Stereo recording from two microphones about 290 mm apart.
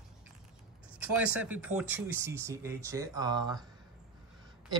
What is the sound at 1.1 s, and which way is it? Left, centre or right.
Speech, centre.